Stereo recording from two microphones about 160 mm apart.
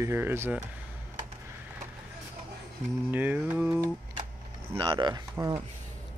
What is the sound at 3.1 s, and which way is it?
Speech, 10° right (ahead or behind).